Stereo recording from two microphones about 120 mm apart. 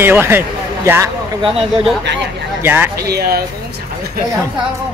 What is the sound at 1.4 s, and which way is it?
Speech, 50° right (ahead or behind).